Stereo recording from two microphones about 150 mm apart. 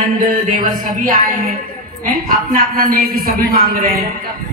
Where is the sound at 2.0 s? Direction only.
65° right (ahead or behind).